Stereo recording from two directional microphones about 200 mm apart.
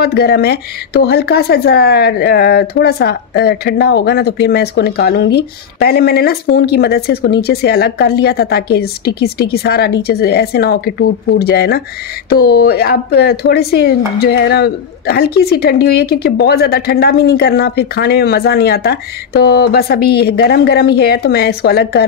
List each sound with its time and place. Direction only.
0.0 s speech: 55° left (ahead or behind)